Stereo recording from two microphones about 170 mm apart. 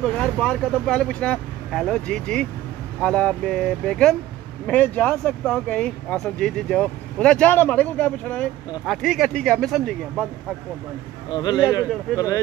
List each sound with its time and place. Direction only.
0.0 s speech: 5° left (ahead or behind)
11.2 s speech: 25° left (ahead or behind)
12.1 s speech: 5° left (ahead or behind)